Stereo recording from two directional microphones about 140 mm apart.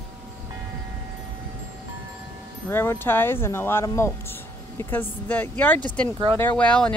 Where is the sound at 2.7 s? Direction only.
15° left (ahead or behind).